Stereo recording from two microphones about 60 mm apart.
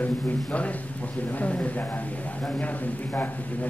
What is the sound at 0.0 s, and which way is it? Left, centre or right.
A man's voice, left.